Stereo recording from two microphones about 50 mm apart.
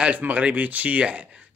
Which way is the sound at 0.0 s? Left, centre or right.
Right.